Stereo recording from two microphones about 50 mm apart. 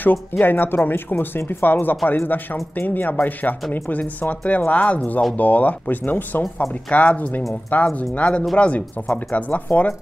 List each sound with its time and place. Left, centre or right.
0.0 s speech: left